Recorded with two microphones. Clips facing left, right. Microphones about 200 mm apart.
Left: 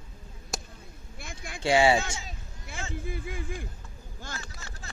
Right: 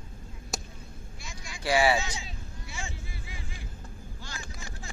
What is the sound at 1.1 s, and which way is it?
Vehicle, 55° left (ahead or behind).